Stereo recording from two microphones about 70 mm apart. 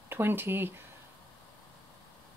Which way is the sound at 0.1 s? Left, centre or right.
Right.